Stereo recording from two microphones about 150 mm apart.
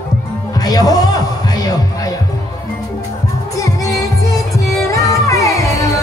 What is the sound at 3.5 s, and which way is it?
Music, 20° left (ahead or behind).